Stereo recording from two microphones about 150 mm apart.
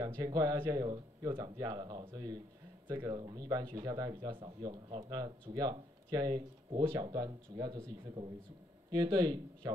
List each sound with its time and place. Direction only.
0.0 s speech: 25° right (ahead or behind)